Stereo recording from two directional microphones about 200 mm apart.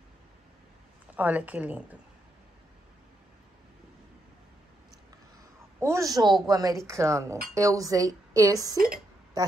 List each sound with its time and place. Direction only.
1.1 s a woman's voice: 10° right (ahead or behind)
5.8 s a woman's voice: 15° right (ahead or behind)
8.7 s speech: 45° right (ahead or behind)
9.4 s speech: 20° right (ahead or behind)